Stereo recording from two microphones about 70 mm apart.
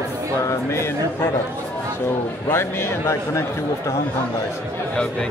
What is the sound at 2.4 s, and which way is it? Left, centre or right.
A man's voice, left.